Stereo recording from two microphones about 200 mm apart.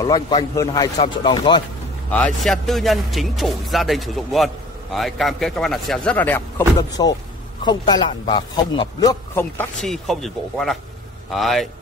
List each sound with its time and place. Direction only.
0.0 s a man's voice: 20° left (ahead or behind)
2.0 s speech: 5° left (ahead or behind)
6.8 s a man's voice: 20° left (ahead or behind); by 11.7 s centre (ahead or behind)